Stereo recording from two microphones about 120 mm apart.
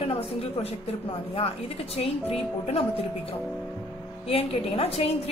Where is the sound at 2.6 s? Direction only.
55° left (ahead or behind).